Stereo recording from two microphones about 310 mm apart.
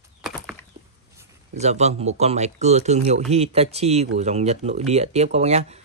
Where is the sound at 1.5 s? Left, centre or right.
Right.